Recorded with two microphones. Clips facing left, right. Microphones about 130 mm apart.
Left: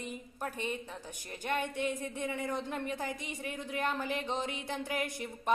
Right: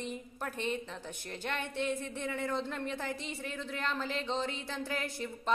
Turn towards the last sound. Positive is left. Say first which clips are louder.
# left 1 dB
turn(degrees=15)  # may be behind; listen again after turning